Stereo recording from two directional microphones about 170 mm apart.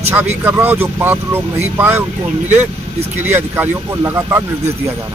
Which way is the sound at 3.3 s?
15° right (ahead or behind).